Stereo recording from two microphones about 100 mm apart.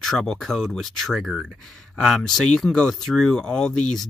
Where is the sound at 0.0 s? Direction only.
5° left (ahead or behind).